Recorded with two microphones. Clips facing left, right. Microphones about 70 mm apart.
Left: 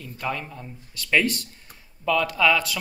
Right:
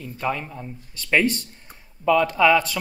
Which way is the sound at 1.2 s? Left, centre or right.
Right.